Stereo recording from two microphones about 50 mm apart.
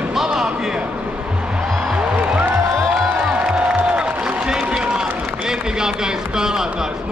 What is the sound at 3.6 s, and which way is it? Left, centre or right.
Music, centre.